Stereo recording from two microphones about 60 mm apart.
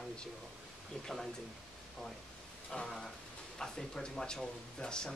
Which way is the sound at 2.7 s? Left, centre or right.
Centre.